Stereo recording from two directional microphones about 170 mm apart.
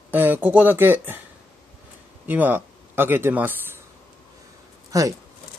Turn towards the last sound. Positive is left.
turn(degrees=-20)  # may be behind; listen again after turning